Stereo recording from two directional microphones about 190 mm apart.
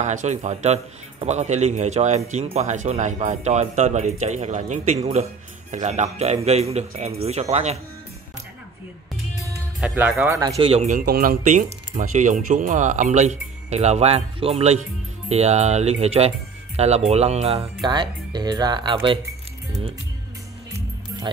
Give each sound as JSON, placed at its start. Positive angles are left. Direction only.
{"t": 0.0, "sound": "speech", "side_deg": -40}
{"t": 9.8, "sound": "speech", "side_deg": -10}
{"t": 10.6, "sound": "speech", "side_deg": -35}
{"t": 17.8, "sound": "speech", "side_deg": -20}